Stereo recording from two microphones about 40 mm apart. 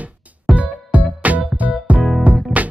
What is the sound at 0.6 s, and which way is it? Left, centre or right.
Music, right.